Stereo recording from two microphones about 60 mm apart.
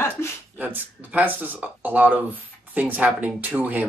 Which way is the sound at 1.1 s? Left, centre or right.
Right.